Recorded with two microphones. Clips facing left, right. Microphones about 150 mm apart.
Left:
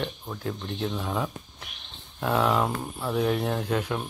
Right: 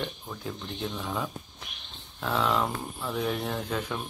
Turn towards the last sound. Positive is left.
turn(degrees=10)  # may be behind; listen again after turning